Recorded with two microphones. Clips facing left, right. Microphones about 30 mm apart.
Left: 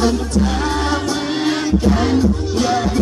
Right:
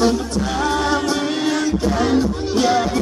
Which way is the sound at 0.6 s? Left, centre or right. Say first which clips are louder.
Right 1 dB; centre.